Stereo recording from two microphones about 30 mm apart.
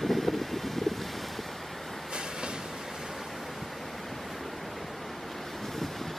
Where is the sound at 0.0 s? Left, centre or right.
Centre.